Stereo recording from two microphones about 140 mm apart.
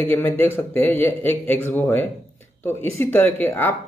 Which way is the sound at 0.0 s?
15° left (ahead or behind).